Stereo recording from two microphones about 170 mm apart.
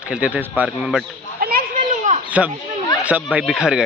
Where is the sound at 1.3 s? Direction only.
60° right (ahead or behind).